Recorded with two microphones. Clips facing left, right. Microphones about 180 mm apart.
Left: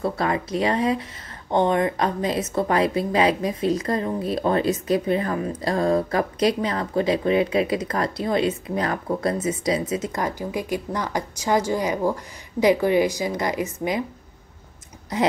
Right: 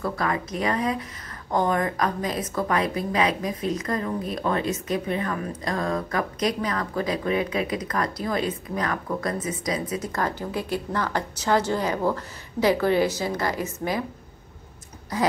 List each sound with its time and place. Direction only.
0.0 s a woman's voice: 30° left (ahead or behind)